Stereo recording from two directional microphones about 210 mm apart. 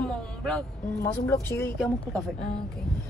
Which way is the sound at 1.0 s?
10° left (ahead or behind).